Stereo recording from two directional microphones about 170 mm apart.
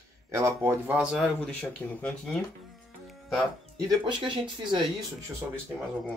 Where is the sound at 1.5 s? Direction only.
5° left (ahead or behind).